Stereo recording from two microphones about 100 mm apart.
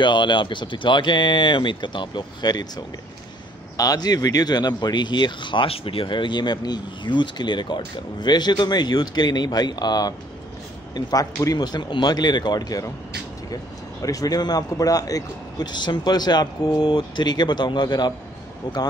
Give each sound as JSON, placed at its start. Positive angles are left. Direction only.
{"t": 0.0, "sound": "speech", "side_deg": 50}
{"t": 14.0, "sound": "speech", "side_deg": 35}